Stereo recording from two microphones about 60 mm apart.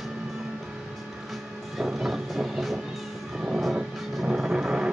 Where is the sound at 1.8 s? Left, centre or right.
Centre.